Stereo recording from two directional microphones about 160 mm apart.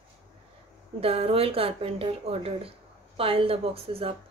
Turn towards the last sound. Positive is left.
turn(degrees=-35)  # may be behind; listen again after turning